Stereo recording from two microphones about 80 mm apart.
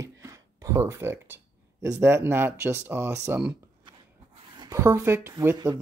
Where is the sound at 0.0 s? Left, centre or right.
Right.